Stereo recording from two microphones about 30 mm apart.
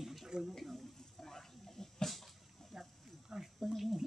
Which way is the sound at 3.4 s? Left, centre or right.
Centre.